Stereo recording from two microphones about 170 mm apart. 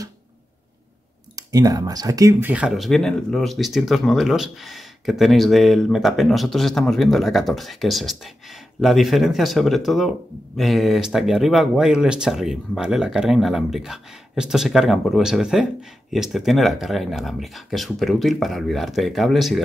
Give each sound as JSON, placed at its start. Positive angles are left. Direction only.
{"t": 1.3, "sound": "speech", "side_deg": -20}
{"t": 2.5, "sound": "speech", "side_deg": -5}